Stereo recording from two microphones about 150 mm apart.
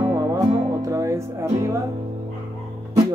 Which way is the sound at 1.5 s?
20° right (ahead or behind).